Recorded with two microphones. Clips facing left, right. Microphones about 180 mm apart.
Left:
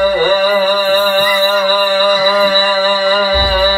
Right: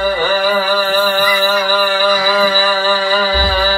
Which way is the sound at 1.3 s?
15° left (ahead or behind).